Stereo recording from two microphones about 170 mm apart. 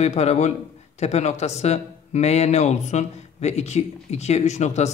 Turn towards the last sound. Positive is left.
turn(degrees=40)  # may be behind; listen again after turning